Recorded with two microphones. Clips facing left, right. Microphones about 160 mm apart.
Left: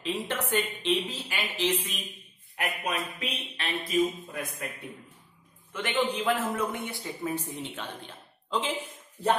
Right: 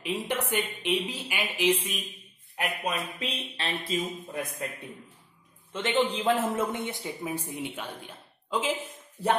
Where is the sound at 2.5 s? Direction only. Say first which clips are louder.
Right 1 dB; 30° right (ahead or behind).